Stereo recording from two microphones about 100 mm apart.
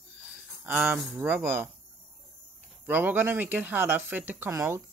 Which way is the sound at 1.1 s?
20° right (ahead or behind).